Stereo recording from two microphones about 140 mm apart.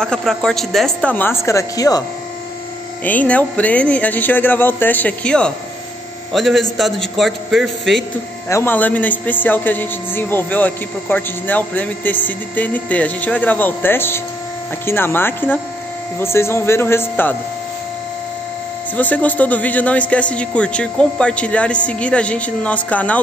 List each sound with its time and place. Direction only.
0.0 s a man's voice: 5° left (ahead or behind); by 2.0 s 25° left (ahead or behind)
3.0 s a man's voice: 10° left (ahead or behind)
8.5 s a man's voice: 15° left (ahead or behind)
18.9 s a man's voice: 10° left (ahead or behind)